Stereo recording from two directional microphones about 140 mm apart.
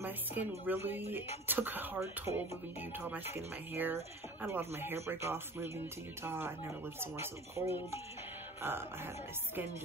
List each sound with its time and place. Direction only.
0.0 s speech: 15° right (ahead or behind)